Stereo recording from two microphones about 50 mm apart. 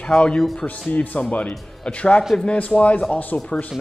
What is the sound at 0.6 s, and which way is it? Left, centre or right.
Speech, left.